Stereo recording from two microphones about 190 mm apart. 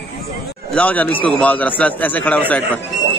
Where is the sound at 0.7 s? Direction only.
10° left (ahead or behind).